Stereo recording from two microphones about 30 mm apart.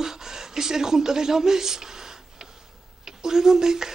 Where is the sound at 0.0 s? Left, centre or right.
Centre.